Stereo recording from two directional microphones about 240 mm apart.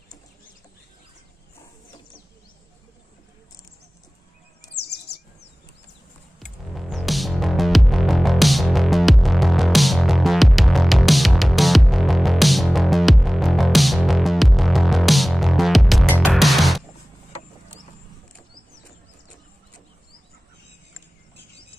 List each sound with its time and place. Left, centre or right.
4.7 s chirp: left
6.4 s music: centre